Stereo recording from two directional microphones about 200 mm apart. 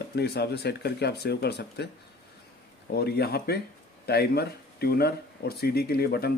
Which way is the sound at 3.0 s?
50° left (ahead or behind).